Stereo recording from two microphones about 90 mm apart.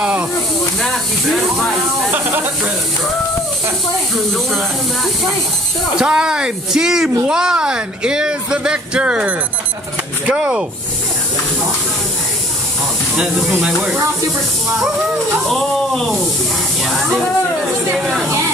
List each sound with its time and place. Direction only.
0.0 s snake: 15° right (ahead or behind)
0.8 s speech: centre (ahead or behind)
4.3 s speech: centre (ahead or behind)
5.9 s speech: 10° right (ahead or behind)
15.5 s speech: 5° left (ahead or behind)